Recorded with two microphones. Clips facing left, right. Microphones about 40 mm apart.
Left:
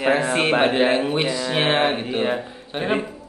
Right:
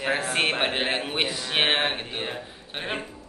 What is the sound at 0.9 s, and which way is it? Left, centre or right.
Speech, right.